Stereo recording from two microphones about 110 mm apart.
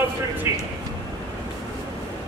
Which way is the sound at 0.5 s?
25° right (ahead or behind).